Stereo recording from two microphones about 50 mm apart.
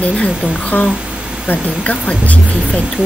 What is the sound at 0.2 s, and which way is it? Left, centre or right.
Speech, left.